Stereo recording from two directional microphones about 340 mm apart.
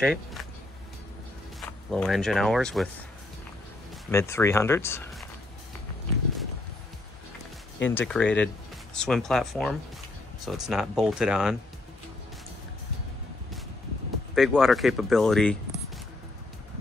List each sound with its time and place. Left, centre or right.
0.0 s speech: centre
1.6 s speech: centre
4.1 s speech: centre
7.8 s speech: centre
14.3 s speech: centre